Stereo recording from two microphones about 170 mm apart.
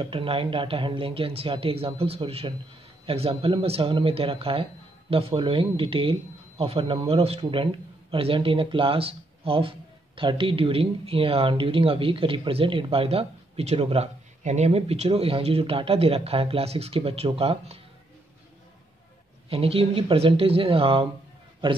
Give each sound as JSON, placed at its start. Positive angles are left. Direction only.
{"t": 0.0, "sound": "speech", "side_deg": -30}
{"t": 19.5, "sound": "speech", "side_deg": -35}